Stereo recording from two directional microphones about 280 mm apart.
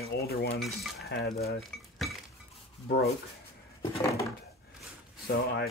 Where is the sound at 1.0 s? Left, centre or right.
Left.